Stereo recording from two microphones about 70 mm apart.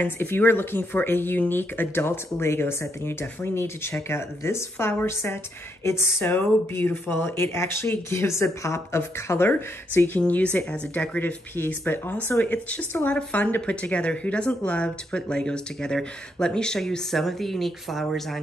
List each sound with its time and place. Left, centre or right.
0.0 s speech: left
9.5 s speech: left
11.1 s speech: left; by 18.4 s centre